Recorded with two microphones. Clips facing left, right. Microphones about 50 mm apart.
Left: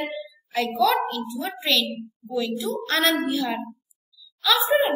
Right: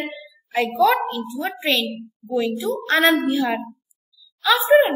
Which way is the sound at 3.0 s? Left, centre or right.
Centre.